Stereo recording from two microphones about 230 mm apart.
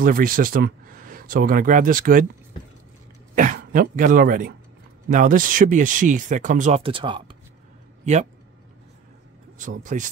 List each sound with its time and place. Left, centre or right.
0.0 s speech: right
3.5 s speech: right
9.6 s speech: right